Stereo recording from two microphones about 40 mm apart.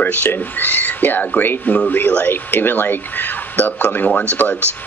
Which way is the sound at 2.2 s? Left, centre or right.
Left.